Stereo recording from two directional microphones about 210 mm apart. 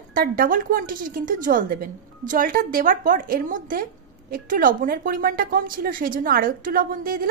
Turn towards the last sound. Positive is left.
turn(degrees=-40)  # may be behind; listen again after turning